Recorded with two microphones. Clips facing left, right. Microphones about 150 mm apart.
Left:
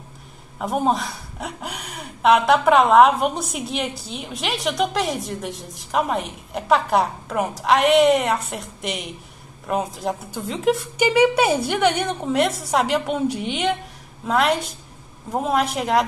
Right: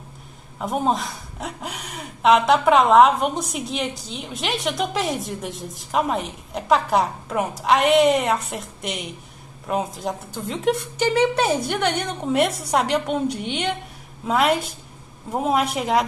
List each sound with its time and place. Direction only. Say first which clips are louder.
0.6 s speech: left 1 dB; centre (ahead or behind)